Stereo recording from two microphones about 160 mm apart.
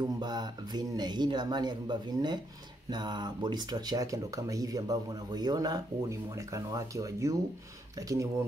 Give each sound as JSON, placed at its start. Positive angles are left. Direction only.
{"t": 0.0, "sound": "speech", "side_deg": -25}